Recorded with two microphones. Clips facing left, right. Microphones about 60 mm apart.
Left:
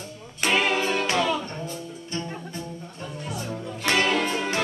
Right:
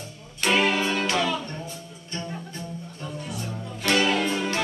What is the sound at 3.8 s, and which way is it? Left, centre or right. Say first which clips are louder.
Music: right 1 dB; left.